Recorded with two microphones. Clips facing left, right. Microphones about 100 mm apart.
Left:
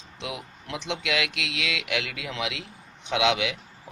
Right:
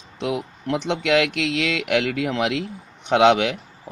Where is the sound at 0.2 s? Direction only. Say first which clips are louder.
Right 10 dB; 50° right (ahead or behind).